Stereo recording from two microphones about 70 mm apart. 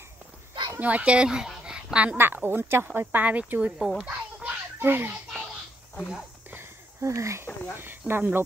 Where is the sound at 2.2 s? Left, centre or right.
Right.